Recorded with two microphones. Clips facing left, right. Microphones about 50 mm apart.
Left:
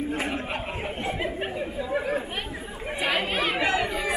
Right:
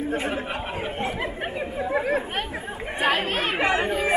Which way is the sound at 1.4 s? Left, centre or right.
Right.